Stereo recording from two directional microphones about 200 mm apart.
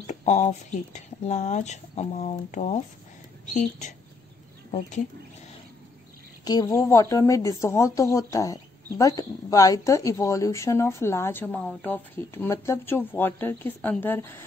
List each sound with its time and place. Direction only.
0.0 s speech: 35° left (ahead or behind)
4.6 s speech: 35° left (ahead or behind)
6.4 s a woman's voice: 20° left (ahead or behind)